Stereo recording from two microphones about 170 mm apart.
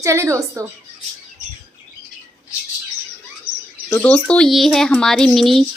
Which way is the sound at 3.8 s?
10° left (ahead or behind).